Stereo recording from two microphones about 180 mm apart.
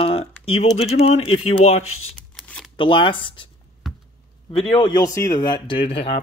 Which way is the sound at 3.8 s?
Centre (ahead or behind).